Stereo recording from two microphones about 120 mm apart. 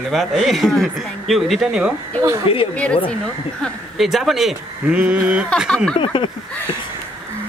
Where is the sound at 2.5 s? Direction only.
50° left (ahead or behind).